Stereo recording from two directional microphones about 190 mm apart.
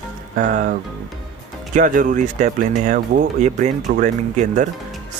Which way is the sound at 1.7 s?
45° right (ahead or behind).